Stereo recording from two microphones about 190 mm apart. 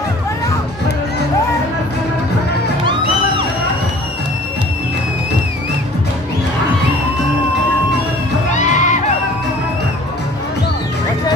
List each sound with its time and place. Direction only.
8.5 s music: 40° left (ahead or behind)